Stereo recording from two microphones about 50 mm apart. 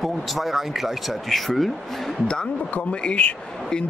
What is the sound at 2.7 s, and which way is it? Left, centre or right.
Speech, left.